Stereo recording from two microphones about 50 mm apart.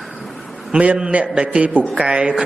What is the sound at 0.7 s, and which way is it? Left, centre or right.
A man's voice, right.